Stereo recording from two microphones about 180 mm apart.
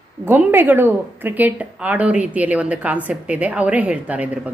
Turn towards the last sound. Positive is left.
turn(degrees=-10)  # may be behind; listen again after turning